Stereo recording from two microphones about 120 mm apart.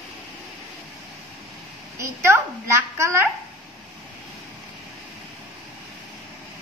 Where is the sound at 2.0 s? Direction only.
20° right (ahead or behind).